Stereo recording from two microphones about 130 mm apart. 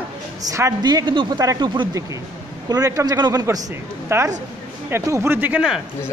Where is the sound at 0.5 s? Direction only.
25° right (ahead or behind).